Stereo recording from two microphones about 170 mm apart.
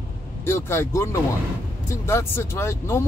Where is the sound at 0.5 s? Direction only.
15° left (ahead or behind).